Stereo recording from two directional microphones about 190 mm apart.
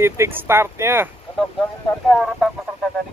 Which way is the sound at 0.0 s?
10° right (ahead or behind).